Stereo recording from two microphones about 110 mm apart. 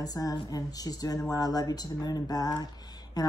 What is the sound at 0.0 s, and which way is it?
Speech, 35° left (ahead or behind).